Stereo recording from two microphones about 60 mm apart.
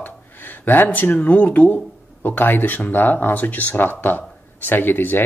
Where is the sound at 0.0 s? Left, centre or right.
Left.